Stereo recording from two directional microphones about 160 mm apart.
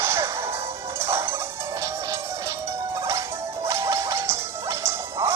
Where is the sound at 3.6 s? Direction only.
20° right (ahead or behind).